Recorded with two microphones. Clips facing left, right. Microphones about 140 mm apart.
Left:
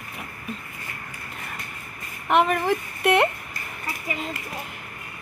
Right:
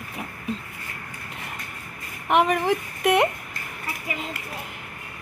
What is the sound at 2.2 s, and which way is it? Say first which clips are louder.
Speech: even; 15° right (ahead or behind).